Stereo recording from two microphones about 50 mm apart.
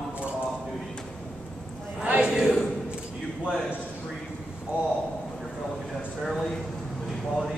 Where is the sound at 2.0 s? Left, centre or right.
Right.